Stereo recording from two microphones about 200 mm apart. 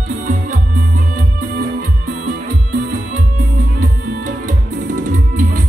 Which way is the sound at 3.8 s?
45° right (ahead or behind).